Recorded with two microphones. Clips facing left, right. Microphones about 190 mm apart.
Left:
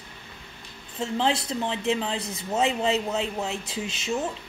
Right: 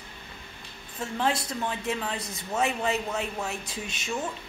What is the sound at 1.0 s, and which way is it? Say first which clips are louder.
A woman's voice: left 3 dB; 25° left (ahead or behind).